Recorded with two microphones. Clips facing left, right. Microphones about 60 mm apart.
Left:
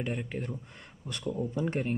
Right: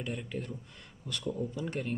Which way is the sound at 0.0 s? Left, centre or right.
Left.